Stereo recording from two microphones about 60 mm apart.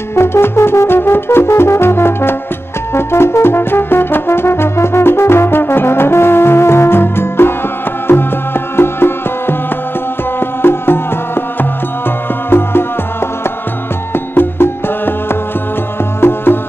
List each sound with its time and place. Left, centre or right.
0.1 s brass instrument: left
8.1 s music: left
12.4 s music: left
14.1 s music: left
16.2 s music: left